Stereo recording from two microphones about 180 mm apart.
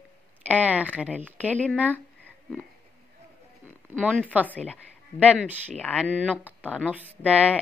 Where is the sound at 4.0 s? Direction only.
5° right (ahead or behind).